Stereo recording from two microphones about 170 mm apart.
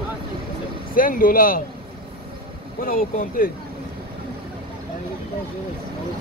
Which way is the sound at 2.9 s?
55° left (ahead or behind).